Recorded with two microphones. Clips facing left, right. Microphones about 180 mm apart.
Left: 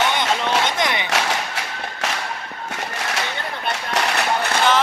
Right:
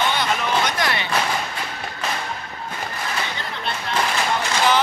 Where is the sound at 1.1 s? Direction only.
80° left.